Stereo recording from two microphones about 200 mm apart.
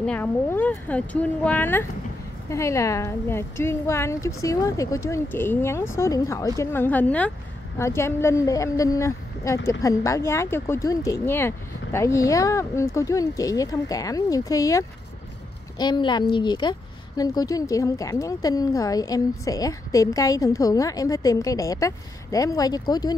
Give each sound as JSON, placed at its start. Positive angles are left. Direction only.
{"t": 0.0, "sound": "a woman's voice", "side_deg": 10}